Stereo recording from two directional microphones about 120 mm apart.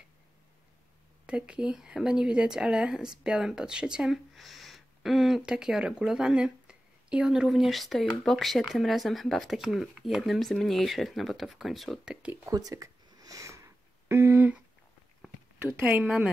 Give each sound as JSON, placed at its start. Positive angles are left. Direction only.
{"t": 1.2, "sound": "speech", "side_deg": -10}
{"t": 12.4, "sound": "speech", "side_deg": -30}
{"t": 15.6, "sound": "speech", "side_deg": -20}